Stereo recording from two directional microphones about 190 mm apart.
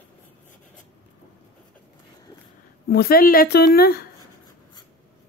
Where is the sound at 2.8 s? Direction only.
55° left (ahead or behind).